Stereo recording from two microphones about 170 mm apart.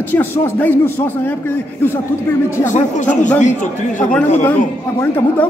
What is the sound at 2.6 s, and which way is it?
A man's voice, 45° left (ahead or behind).